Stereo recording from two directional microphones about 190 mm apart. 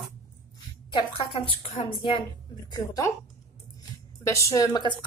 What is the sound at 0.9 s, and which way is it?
A woman's voice, 25° left (ahead or behind).